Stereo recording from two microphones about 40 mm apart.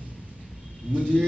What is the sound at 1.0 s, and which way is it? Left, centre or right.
Speech, right.